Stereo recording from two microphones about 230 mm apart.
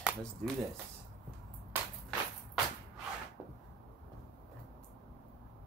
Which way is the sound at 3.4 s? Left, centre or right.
Centre.